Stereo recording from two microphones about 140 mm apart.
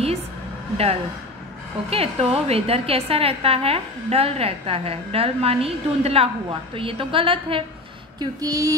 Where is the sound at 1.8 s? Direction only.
45° right (ahead or behind).